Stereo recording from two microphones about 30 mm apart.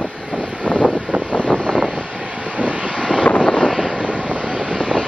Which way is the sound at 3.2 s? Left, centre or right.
Left.